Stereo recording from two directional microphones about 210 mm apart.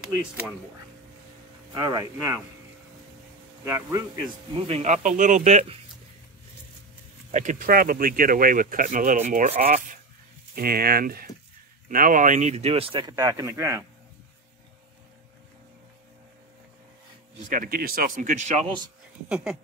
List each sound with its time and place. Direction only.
0.0 s speech: 10° right (ahead or behind)
1.7 s speech: 15° right (ahead or behind)
3.6 s speech: 10° right (ahead or behind)
4.6 s speech: 25° right (ahead or behind)
7.2 s speech: 35° right (ahead or behind); by 13.8 s 15° right (ahead or behind)
17.5 s speech: 40° right (ahead or behind)
19.2 s speech: 5° right (ahead or behind)